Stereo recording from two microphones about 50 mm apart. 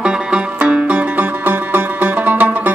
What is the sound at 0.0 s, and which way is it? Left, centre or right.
Music, right.